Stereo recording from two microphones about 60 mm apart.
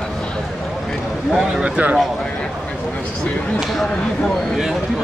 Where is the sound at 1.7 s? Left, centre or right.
Right.